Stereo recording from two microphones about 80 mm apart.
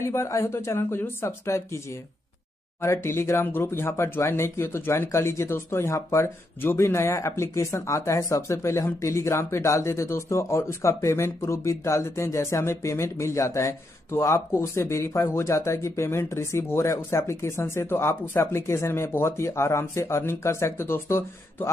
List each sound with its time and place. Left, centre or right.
0.0 s speech: left
2.8 s speech: left